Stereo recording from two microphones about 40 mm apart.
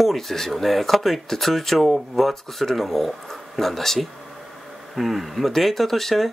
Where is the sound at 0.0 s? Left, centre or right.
Centre.